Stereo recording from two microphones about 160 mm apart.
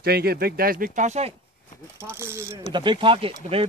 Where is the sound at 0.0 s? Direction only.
80° right; by 1.3 s 45° right (ahead or behind).